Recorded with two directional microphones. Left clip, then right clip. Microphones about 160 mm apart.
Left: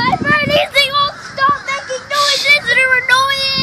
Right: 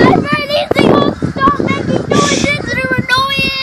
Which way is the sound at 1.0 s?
65° left (ahead or behind).